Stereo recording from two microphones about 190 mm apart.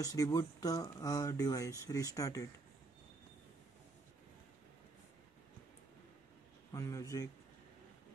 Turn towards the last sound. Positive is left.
turn(degrees=15)  # may be behind; listen again after turning